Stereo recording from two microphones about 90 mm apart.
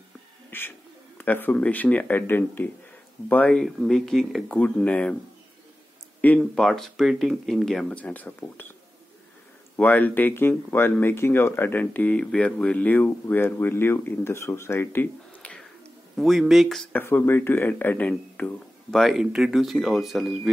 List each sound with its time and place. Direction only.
0.5 s speech: 25° left (ahead or behind)
3.5 s speech: 5° left (ahead or behind)
4.5 s speech: 15° left (ahead or behind)
6.5 s speech: 5° left (ahead or behind)
7.9 s speech: 15° left (ahead or behind)
9.8 s speech: 20° left (ahead or behind)
15.4 s a sound: 15° left (ahead or behind)
16.2 s speech: centre (ahead or behind)
16.9 s speech: 25° left (ahead or behind)
18.9 s speech: centre (ahead or behind)